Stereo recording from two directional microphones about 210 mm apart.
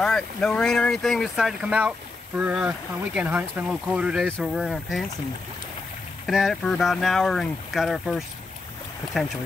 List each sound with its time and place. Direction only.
0.0 s speech: 5° left (ahead or behind)
6.2 s speech: centre (ahead or behind)